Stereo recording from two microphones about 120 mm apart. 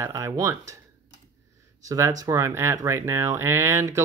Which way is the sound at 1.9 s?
30° right (ahead or behind).